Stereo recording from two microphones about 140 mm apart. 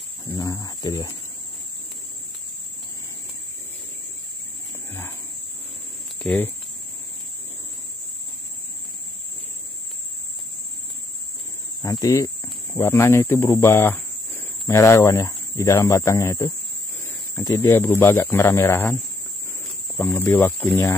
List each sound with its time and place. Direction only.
0.2 s speech: 35° left (ahead or behind)
6.2 s speech: 15° left (ahead or behind)
11.8 s speech: 25° left (ahead or behind)
20.0 s speech: 15° left (ahead or behind)